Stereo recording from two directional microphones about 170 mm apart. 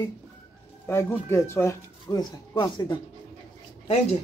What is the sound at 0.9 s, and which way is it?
Speech, 15° left (ahead or behind).